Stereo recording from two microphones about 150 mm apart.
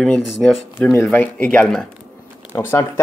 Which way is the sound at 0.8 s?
15° left (ahead or behind).